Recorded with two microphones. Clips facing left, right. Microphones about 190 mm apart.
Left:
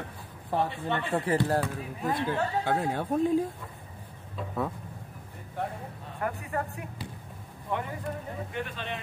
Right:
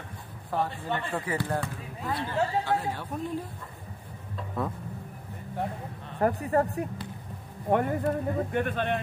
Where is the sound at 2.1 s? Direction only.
50° left (ahead or behind).